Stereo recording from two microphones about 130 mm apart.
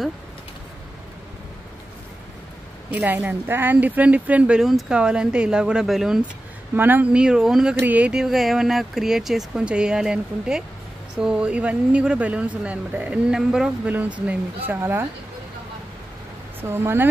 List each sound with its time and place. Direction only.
2.9 s speech: 10° right (ahead or behind)
6.7 s speech: 15° right (ahead or behind)
16.6 s speech: 20° right (ahead or behind)